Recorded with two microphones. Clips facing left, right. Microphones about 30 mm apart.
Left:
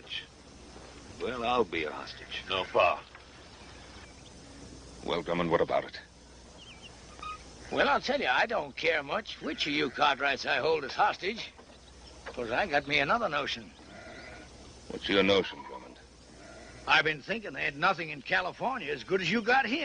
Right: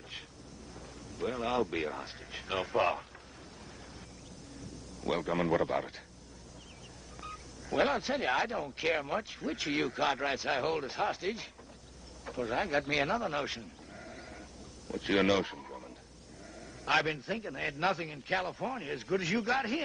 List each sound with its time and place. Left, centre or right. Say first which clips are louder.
0.1 s ocean: left 7 dB; left
1.1 s speech: left 3 dB; centre
2.1 s speech: left 2 dB; left
2.7 s speech: left 5 dB; centre
5.0 s speech: left 1 dB; centre
7.2 s a sound: left 4 dB; centre
7.9 s speech: left 4 dB; left
11.1 s speech: left 3 dB; left
12.4 s speech: left 2 dB; centre
13.9 s sheep: left 2 dB; centre
15.0 s speech: left 3 dB; left
16.9 s speech: left 4 dB; left; by 18.9 s centre
18.9 s speech: even; left